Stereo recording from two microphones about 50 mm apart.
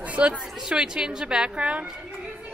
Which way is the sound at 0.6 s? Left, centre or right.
Centre.